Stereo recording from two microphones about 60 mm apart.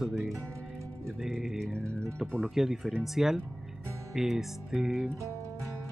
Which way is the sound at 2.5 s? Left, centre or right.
Centre.